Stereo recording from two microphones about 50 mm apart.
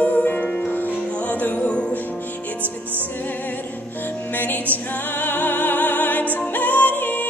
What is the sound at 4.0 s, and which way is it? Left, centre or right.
Music, left.